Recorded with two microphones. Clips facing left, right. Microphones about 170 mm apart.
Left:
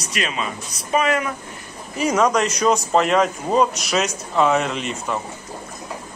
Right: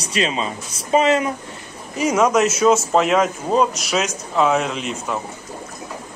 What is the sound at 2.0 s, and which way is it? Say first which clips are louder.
Speech: right 2 dB; 10° right (ahead or behind).